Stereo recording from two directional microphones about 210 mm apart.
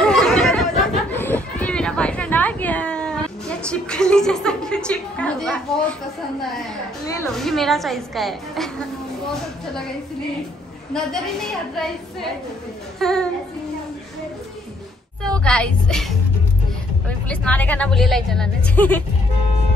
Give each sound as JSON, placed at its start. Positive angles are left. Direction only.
{"t": 0.0, "sound": "chatter", "side_deg": 5}
{"t": 1.1, "sound": "a sound", "side_deg": 10}
{"t": 7.2, "sound": "a woman's voice", "side_deg": 0}
{"t": 10.9, "sound": "a woman's voice", "side_deg": 0}
{"t": 15.2, "sound": "a woman's voice", "side_deg": 5}
{"t": 17.3, "sound": "a woman's voice", "side_deg": 5}